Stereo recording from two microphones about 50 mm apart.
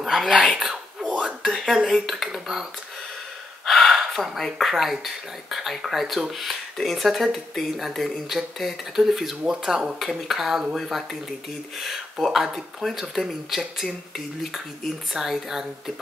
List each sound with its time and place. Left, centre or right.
0.0 s speech: centre
1.0 s a sound: centre
1.4 s speech: centre
3.6 s speech: centre